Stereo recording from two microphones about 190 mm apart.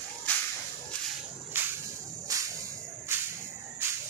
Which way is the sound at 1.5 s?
10° right (ahead or behind).